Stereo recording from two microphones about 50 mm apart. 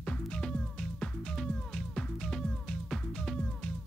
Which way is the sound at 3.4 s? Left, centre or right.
Centre.